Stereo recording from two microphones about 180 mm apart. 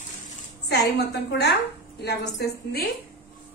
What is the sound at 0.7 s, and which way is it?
A woman's voice, 65° left (ahead or behind).